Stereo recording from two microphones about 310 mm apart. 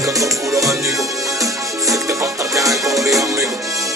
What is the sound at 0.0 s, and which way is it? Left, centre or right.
Music, centre.